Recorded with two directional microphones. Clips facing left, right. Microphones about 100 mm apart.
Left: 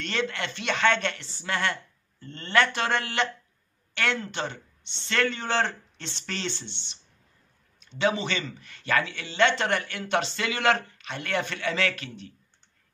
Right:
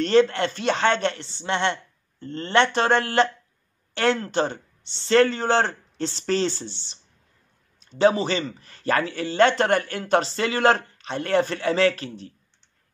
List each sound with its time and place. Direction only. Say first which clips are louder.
0.0 s speech: right 12 dB; 35° right (ahead or behind)